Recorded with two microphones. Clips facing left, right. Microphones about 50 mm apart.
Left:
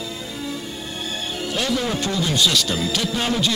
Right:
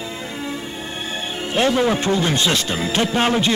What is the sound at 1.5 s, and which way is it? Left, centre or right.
Speech, right.